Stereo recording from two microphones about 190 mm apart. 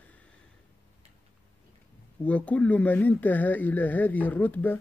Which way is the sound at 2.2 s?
5° left (ahead or behind).